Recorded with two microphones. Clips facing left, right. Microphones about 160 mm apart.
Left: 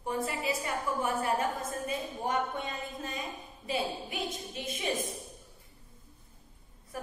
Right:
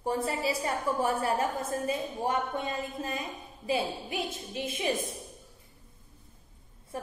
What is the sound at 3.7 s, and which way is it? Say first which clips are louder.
A woman's voice: right 3 dB; 30° right (ahead or behind).